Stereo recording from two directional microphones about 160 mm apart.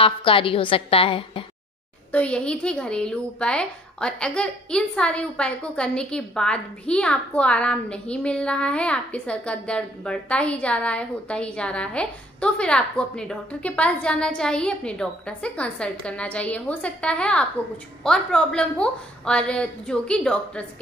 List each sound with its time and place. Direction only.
0.0 s a woman's voice: 35° left (ahead or behind)
2.1 s speech: 5° left (ahead or behind)